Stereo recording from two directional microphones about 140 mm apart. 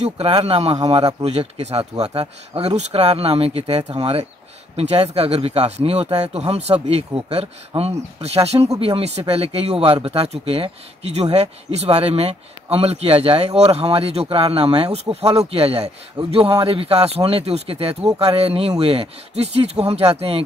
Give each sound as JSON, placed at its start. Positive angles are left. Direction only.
{"t": 0.0, "sound": "speech", "side_deg": -45}
{"t": 0.7, "sound": "a man's voice", "side_deg": -30}
{"t": 1.0, "sound": "speech", "side_deg": -45}